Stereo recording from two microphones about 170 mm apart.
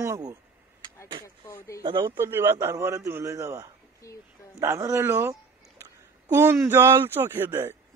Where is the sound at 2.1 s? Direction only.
15° right (ahead or behind).